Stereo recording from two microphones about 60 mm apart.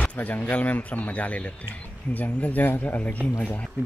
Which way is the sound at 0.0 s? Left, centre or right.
Left.